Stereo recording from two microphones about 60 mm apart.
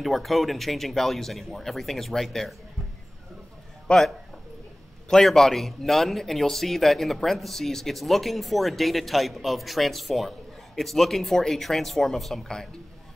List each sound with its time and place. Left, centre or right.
0.0 s a man's voice: centre
3.8 s a man's voice: centre
5.1 s a man's voice: centre